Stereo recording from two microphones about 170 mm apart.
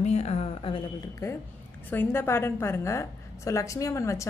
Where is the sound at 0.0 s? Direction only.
40° left (ahead or behind).